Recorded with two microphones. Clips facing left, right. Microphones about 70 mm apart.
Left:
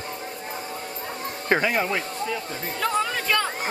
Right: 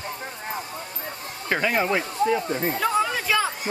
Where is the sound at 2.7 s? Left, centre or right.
Centre.